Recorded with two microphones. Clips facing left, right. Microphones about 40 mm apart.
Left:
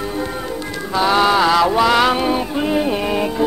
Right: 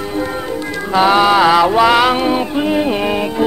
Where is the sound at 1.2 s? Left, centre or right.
Centre.